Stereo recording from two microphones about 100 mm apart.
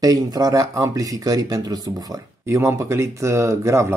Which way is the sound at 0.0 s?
40° right (ahead or behind).